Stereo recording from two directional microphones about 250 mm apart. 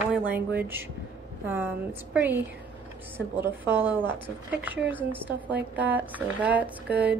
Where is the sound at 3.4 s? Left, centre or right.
Centre.